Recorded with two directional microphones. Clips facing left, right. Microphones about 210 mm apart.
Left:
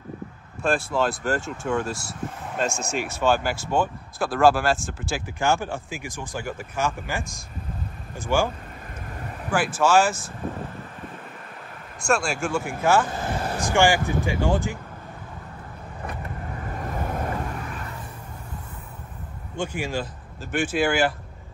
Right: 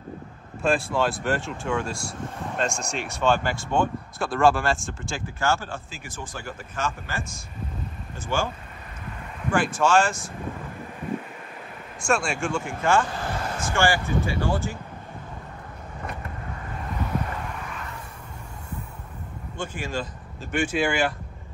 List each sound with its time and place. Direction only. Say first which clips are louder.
0.6 s speech: even; centre (ahead or behind)
8.3 s speech: left 4 dB; 10° left (ahead or behind)
9.5 s speech: left 1 dB; 5° left (ahead or behind)
12.0 s speech: left 1 dB; centre (ahead or behind)
13.1 s speech: left 2 dB; 20° left (ahead or behind)
19.5 s speech: left 3 dB; 10° left (ahead or behind)